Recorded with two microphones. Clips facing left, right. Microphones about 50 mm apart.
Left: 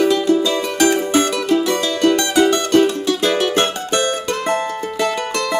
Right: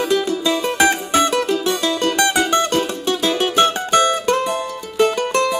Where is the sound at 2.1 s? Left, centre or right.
Right.